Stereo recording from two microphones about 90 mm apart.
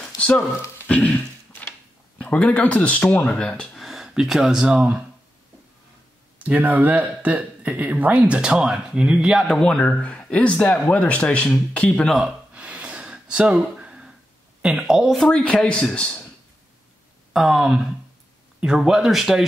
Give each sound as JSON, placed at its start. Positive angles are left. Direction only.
{"t": 0.2, "sound": "speech", "side_deg": 15}
{"t": 0.8, "sound": "a sound", "side_deg": 15}
{"t": 2.1, "sound": "speech", "side_deg": 15}
{"t": 3.8, "sound": "speech", "side_deg": -5}
{"t": 6.3, "sound": "speech", "side_deg": -15}
{"t": 12.2, "sound": "gasp", "side_deg": -15}
{"t": 14.6, "sound": "speech", "side_deg": -10}
{"t": 17.3, "sound": "a sound", "side_deg": -5}
{"t": 18.6, "sound": "speech", "side_deg": -5}